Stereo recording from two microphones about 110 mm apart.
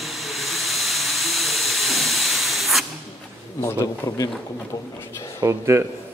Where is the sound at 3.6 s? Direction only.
25° left (ahead or behind).